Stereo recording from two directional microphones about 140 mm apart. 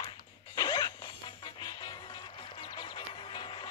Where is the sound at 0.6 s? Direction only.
30° left (ahead or behind).